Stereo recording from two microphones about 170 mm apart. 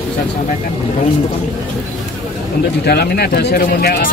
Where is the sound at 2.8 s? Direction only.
70° left (ahead or behind).